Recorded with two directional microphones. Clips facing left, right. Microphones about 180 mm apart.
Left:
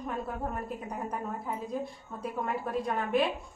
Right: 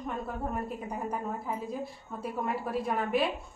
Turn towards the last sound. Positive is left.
turn(degrees=-5)  # may be behind; listen again after turning